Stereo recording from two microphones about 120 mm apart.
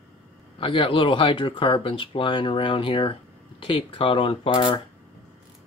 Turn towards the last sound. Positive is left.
turn(degrees=45)  # may be behind; listen again after turning